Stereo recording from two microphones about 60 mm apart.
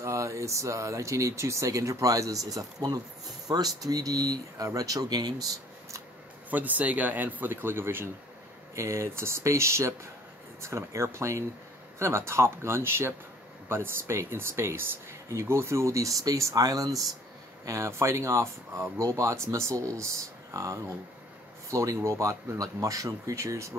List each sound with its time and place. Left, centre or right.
0.0 s speech: right
6.5 s speech: right
8.7 s speech: right
17.6 s speech: right
19.7 s speech: right
20.5 s speech: right